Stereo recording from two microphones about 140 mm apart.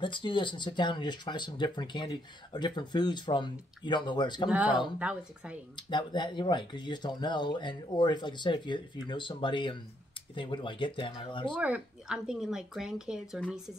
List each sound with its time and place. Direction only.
0.0 s speech: 35° left (ahead or behind)
4.9 s speech: 10° right (ahead or behind)
5.8 s speech: 35° left (ahead or behind)
11.5 s speech: 10° right (ahead or behind)